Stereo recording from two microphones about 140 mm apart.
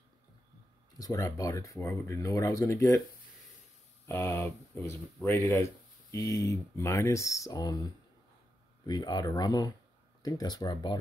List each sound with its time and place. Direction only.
0.9 s speech: 25° left (ahead or behind)
4.1 s speech: 15° left (ahead or behind)